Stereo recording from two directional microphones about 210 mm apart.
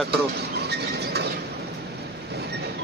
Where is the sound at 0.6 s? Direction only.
50° right (ahead or behind).